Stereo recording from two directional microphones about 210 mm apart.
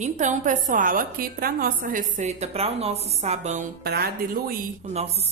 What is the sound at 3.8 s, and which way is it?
Speech, 50° right (ahead or behind).